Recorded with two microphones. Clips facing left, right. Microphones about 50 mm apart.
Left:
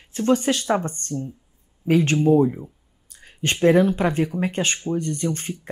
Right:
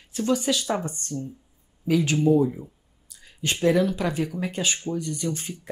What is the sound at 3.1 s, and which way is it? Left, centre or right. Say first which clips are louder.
Speech: left 3 dB; left.